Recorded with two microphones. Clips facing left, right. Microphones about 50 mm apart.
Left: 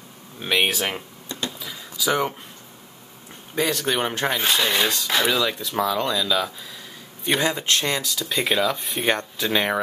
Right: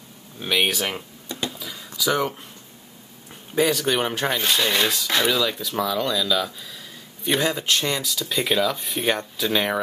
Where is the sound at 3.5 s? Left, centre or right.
Centre.